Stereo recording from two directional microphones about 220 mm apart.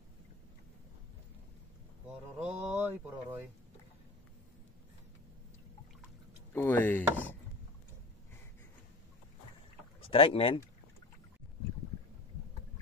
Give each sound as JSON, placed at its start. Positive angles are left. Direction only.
{"t": 2.0, "sound": "a sound", "side_deg": -5}
{"t": 6.5, "sound": "speech", "side_deg": 10}
{"t": 10.1, "sound": "speech", "side_deg": 25}